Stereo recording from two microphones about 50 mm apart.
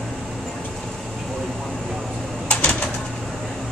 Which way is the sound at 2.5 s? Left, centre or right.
Centre.